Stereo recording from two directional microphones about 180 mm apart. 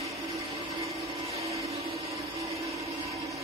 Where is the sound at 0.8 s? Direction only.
35° right (ahead or behind).